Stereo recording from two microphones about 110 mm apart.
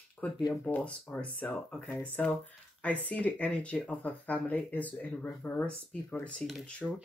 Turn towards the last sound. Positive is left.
turn(degrees=5)  # may be behind; listen again after turning